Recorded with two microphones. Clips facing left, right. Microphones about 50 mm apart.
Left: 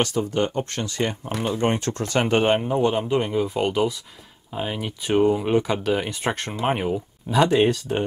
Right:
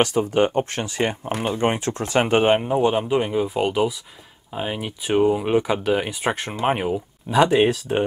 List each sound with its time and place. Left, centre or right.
0.0 s speech: right; by 8.0 s centre